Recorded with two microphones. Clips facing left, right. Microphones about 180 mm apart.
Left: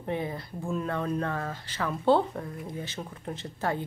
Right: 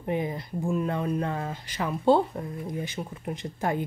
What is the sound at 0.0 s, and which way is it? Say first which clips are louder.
Speech: right 3 dB; 15° right (ahead or behind).